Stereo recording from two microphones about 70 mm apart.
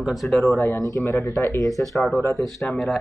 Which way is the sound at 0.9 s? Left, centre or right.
Left.